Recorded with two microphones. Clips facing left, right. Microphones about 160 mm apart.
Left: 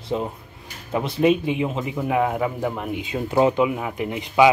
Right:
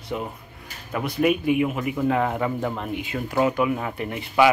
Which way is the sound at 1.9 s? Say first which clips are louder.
Left 1 dB; 10° left (ahead or behind).